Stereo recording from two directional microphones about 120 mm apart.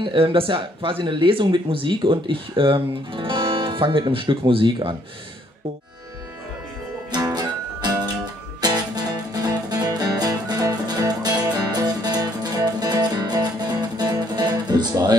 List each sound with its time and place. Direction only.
0.0 s speech: 45° right (ahead or behind)
7.1 s music: 30° right (ahead or behind)